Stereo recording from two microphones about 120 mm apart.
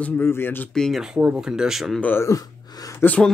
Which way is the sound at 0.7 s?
Centre (ahead or behind).